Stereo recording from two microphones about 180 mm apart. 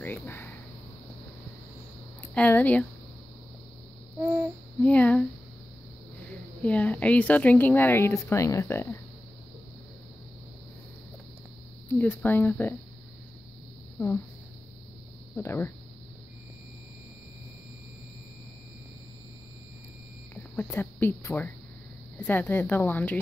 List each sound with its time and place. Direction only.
0.0 s a woman's voice: 10° left (ahead or behind)
2.3 s a woman's voice: 10° left (ahead or behind)
4.2 s humming: 10° right (ahead or behind)
4.8 s a woman's voice: 5° left (ahead or behind)
6.6 s a woman's voice: 10° left (ahead or behind)
11.9 s a woman's voice: 10° left (ahead or behind)
13.9 s speech: 10° left (ahead or behind)
15.3 s a woman's voice: 10° left (ahead or behind)
20.7 s a woman's voice: 10° left (ahead or behind)